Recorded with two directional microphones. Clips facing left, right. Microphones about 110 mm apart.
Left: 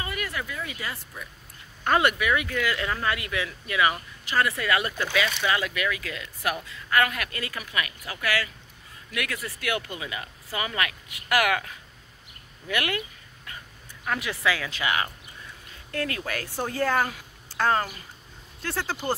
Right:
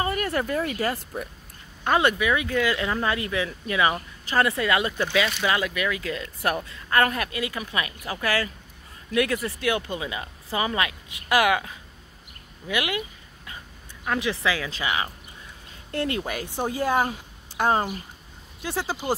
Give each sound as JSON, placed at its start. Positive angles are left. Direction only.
{"t": 0.0, "sound": "speech", "side_deg": -40}
{"t": 1.9, "sound": "speech", "side_deg": -25}
{"t": 7.2, "sound": "speech", "side_deg": -20}
{"t": 14.0, "sound": "speech", "side_deg": -25}